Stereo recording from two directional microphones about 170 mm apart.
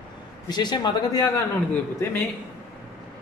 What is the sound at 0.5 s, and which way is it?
A man's voice, 25° left (ahead or behind).